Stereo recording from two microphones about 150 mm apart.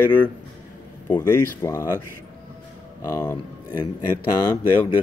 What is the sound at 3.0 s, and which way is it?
Speech, 25° left (ahead or behind).